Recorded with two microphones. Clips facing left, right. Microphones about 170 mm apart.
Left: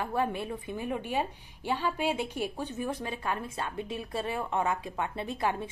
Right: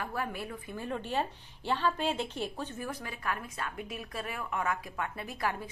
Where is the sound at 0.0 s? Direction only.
25° left (ahead or behind).